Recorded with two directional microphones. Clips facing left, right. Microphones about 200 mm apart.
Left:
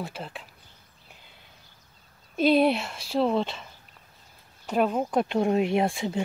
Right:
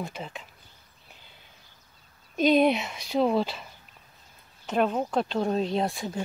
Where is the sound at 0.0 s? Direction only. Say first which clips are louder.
Even; 5° left (ahead or behind).